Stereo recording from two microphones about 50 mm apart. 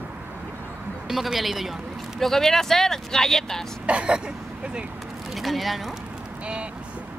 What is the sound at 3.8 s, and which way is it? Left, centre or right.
Speech, centre.